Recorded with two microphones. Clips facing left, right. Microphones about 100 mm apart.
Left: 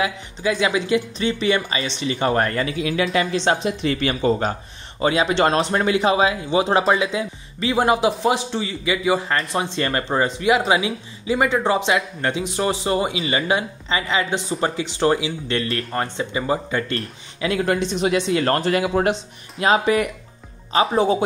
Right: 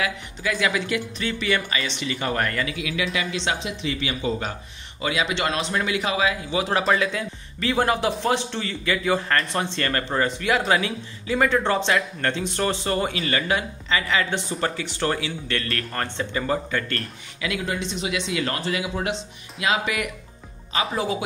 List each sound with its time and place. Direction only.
0.0 s speech: 25° left (ahead or behind)
7.0 s a man's voice: 20° left (ahead or behind)
17.4 s speech: 35° left (ahead or behind)
17.7 s speech: 50° left (ahead or behind)
19.6 s speech: 35° left (ahead or behind)